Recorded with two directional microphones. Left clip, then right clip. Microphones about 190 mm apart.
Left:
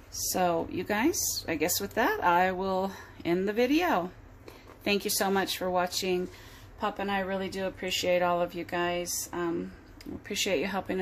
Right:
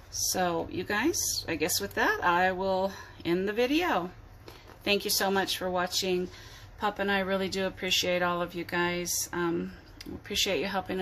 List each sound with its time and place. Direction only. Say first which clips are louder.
0.1 s speech: left 1 dB; 10° left (ahead or behind)